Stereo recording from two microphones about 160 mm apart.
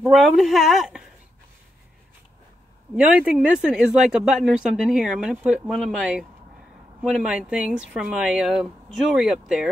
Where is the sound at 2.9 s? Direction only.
5° right (ahead or behind).